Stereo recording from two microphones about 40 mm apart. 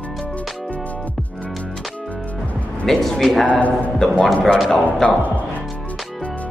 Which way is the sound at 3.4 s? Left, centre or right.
Left.